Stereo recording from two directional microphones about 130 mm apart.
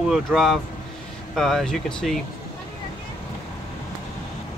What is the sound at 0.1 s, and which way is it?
Speech, centre (ahead or behind).